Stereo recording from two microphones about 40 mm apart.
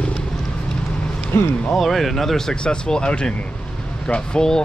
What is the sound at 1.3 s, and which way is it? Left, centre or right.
Speech, left.